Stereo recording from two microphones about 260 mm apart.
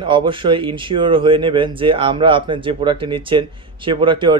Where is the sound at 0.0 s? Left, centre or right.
Centre.